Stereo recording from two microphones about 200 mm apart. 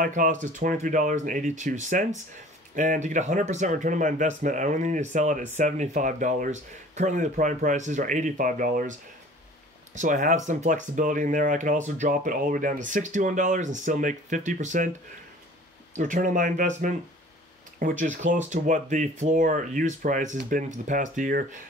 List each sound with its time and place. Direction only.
0.0 s speech: 40° right (ahead or behind)
9.9 s speech: 40° right (ahead or behind)
16.0 s speech: 40° right (ahead or behind)